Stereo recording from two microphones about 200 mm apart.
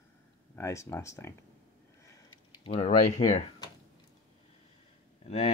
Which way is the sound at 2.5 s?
30° left (ahead or behind).